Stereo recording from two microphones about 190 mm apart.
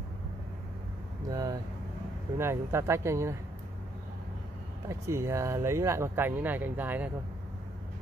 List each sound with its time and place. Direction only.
1.3 s speech: 20° right (ahead or behind)
4.8 s speech: 15° right (ahead or behind)